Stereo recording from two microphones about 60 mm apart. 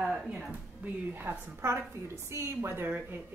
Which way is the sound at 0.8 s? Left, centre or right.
Right.